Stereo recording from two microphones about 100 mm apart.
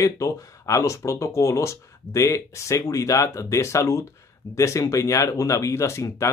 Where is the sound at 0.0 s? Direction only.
35° left (ahead or behind).